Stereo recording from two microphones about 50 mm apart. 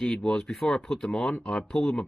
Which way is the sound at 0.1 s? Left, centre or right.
Centre.